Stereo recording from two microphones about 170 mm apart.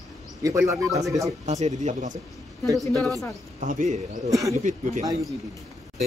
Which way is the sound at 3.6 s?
45° right (ahead or behind).